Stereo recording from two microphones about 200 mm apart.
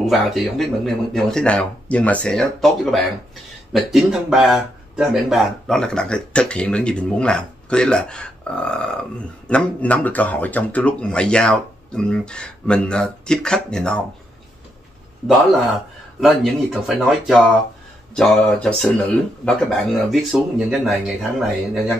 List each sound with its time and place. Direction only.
0.0 s speech: centre (ahead or behind)
16.2 s speech: centre (ahead or behind)